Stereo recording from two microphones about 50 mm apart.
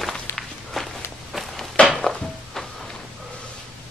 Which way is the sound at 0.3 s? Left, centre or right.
Left.